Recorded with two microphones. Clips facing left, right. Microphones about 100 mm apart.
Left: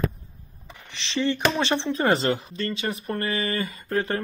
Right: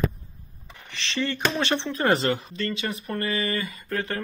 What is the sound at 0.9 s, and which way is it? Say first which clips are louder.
Speech: left 3 dB; 20° left (ahead or behind).